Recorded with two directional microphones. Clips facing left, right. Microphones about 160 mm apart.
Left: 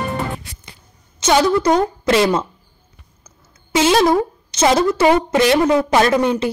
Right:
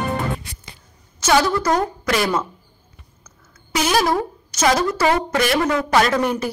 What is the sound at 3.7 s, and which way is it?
A woman's voice, 25° left (ahead or behind).